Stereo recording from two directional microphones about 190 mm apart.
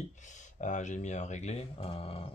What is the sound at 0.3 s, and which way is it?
Speech, 40° left (ahead or behind).